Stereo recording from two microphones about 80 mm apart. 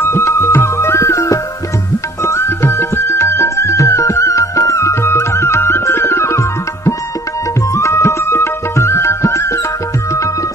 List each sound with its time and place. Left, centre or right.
0.0 s music: left